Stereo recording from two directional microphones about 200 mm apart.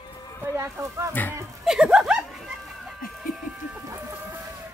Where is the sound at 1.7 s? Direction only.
5° right (ahead or behind).